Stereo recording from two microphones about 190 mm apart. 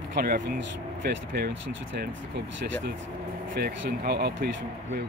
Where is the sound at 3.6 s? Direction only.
55° right (ahead or behind).